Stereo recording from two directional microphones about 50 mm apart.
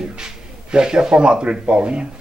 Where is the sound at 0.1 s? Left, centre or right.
Centre.